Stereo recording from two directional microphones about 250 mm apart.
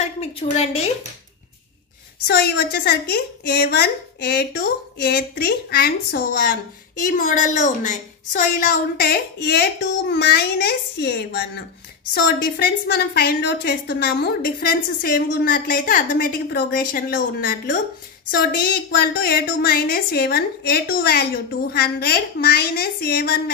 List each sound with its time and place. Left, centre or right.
0.0 s a woman's voice: left
2.2 s a woman's voice: left